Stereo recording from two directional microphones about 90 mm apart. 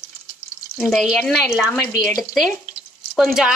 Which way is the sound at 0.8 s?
Centre (ahead or behind).